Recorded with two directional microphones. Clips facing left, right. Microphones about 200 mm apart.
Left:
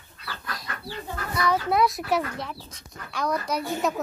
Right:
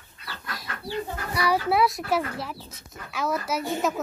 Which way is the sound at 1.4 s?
5° right (ahead or behind).